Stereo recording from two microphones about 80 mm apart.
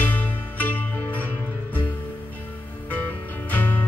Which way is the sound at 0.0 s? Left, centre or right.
Left.